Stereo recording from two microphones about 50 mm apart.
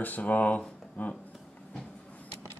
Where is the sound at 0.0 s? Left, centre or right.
Left.